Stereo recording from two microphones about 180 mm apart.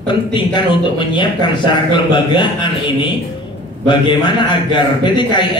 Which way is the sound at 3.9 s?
25° left (ahead or behind).